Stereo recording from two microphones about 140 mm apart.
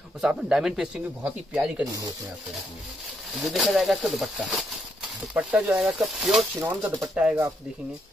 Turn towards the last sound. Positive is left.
turn(degrees=-10)  # may be behind; listen again after turning